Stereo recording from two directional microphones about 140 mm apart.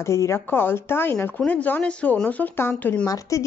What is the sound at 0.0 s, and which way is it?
Speech, 20° left (ahead or behind).